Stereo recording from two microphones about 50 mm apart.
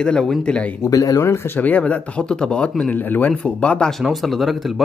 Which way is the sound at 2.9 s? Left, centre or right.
Left.